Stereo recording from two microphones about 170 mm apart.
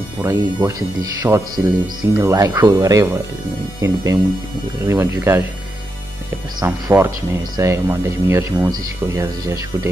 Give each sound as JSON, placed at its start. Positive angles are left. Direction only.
{"t": 0.2, "sound": "speech", "side_deg": -15}
{"t": 6.6, "sound": "speech", "side_deg": -15}